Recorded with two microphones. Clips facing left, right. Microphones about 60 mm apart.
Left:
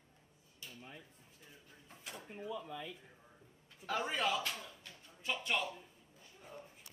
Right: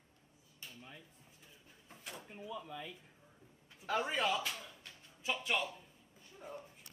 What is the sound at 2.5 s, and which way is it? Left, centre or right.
Speech, centre.